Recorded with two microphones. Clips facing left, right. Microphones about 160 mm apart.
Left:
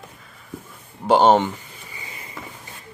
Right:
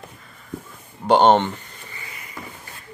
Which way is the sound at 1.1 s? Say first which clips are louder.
Even; 5° left (ahead or behind).